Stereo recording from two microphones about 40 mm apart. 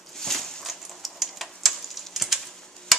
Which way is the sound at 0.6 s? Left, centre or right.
Centre.